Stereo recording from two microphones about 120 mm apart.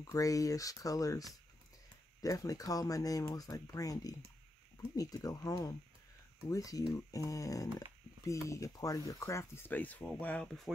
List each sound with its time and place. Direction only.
0.0 s speech: 30° left (ahead or behind); by 10.7 s 5° left (ahead or behind)